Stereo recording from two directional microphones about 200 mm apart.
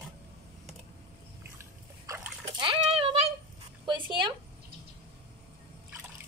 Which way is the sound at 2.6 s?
25° right (ahead or behind).